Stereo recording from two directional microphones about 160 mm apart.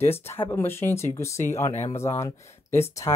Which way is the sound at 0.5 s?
15° left (ahead or behind).